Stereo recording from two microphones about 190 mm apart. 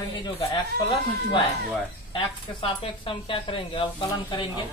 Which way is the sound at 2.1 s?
25° left (ahead or behind).